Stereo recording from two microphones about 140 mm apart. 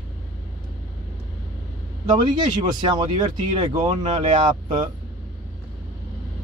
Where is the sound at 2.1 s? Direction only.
35° right (ahead or behind).